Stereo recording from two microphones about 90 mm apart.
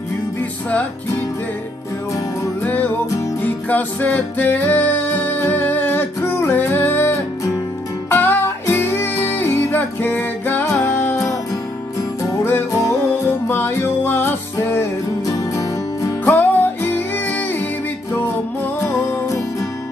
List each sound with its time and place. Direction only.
2.6 s music: 20° left (ahead or behind)
12.4 s music: 25° left (ahead or behind)
15.2 s music: 40° left (ahead or behind)
16.3 s music: 20° left (ahead or behind)
18.8 s music: 30° left (ahead or behind)